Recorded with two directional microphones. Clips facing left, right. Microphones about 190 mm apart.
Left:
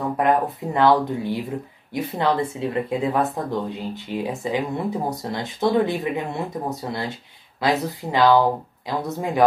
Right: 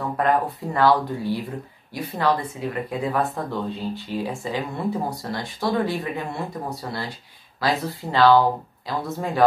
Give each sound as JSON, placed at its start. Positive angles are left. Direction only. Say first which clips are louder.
{"t": 0.2, "sound": "speech", "louder": "left 1 dB", "side_deg": 20}